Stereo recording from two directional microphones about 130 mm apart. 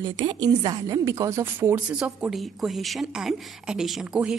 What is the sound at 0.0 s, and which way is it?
A woman's voice, 35° right (ahead or behind).